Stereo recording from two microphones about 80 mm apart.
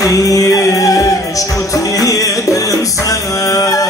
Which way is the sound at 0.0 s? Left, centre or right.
Left.